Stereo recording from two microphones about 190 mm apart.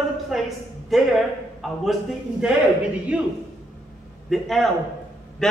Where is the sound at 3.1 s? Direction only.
5° right (ahead or behind).